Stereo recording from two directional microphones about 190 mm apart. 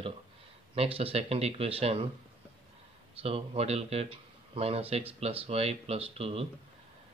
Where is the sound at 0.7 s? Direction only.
30° right (ahead or behind).